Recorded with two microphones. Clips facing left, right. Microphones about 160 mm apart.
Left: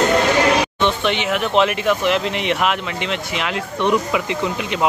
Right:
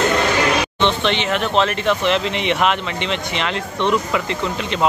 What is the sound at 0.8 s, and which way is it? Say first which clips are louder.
Speech: right 3 dB; 10° left (ahead or behind).